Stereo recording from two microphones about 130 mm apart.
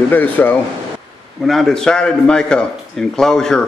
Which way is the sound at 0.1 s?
15° left (ahead or behind).